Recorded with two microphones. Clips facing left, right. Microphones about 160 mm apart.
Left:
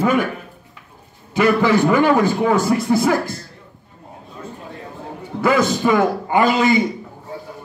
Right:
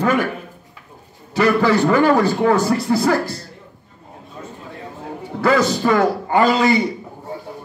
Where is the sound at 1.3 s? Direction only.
10° left (ahead or behind).